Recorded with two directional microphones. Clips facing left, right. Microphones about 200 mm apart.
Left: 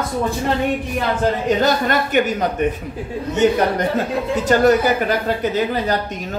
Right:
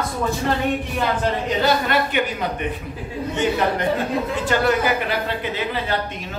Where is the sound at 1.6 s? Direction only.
45° left (ahead or behind).